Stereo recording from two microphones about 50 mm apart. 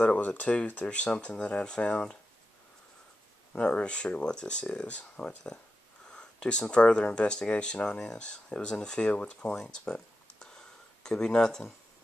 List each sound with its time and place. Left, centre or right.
0.0 s speech: left
3.5 s speech: left
9.6 s a sound: centre